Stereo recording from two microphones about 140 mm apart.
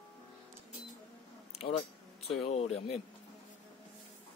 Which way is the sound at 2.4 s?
45° left (ahead or behind).